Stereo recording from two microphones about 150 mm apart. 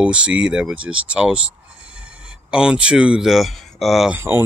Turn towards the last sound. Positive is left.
turn(degrees=-15)  # may be behind; listen again after turning